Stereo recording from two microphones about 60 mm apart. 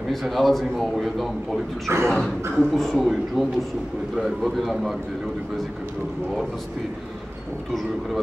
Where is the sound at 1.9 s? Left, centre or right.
Right.